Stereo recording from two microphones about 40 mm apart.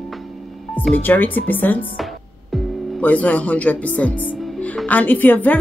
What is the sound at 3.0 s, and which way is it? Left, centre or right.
Speech, left.